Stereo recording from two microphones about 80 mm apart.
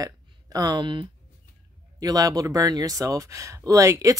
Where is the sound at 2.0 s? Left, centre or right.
Right.